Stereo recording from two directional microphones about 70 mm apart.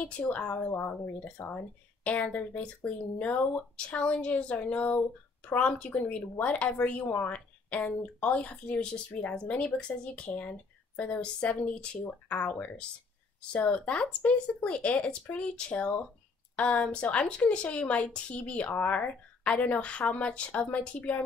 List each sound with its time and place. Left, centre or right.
0.0 s a woman's voice: centre